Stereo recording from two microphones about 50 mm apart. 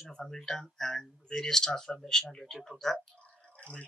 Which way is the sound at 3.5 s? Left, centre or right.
Left.